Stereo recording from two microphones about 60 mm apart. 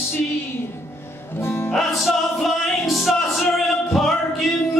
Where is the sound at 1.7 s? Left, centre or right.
Centre.